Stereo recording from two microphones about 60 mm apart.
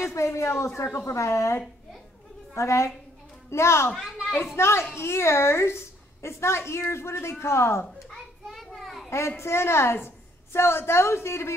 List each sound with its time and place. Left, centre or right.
0.0 s a child's voice: left
8.6 s children playing: centre
9.4 s a woman's voice: left